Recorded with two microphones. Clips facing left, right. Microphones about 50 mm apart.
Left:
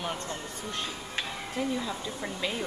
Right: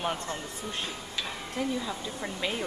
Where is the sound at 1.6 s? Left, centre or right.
Centre.